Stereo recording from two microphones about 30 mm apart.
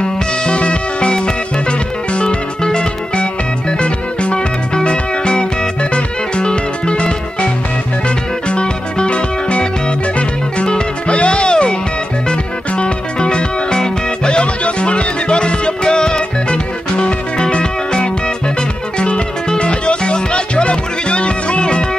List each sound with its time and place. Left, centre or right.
0.0 s music: left
8.5 s music: left
10.7 s music: left